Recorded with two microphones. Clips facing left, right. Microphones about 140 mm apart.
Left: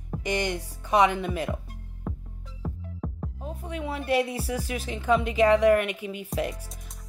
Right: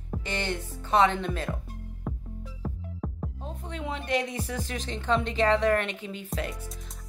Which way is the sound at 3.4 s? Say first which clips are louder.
Left 3 dB; 10° left (ahead or behind).